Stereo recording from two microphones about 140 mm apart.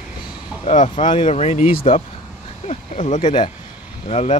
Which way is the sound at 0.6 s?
50° left (ahead or behind).